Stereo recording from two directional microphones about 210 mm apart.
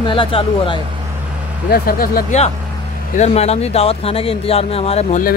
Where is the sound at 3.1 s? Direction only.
30° left (ahead or behind).